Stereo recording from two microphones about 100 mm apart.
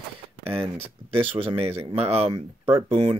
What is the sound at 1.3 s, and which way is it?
Speech, 70° right (ahead or behind).